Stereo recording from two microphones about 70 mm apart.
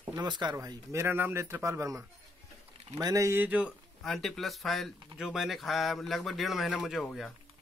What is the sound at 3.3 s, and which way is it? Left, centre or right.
Speech, right.